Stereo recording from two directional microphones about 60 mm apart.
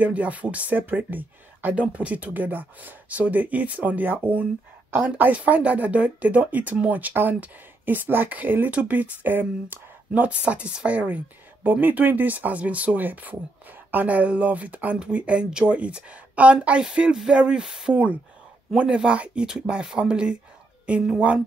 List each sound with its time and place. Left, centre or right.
0.0 s speech: right
19.4 s speech: centre